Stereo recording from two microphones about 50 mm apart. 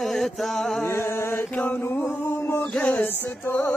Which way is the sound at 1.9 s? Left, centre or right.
Left.